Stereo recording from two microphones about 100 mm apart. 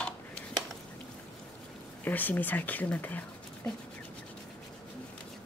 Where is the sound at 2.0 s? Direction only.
15° left (ahead or behind).